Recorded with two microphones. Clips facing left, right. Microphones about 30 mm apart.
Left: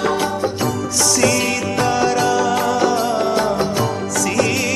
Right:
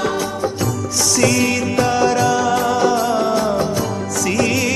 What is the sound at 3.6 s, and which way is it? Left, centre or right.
Music, left.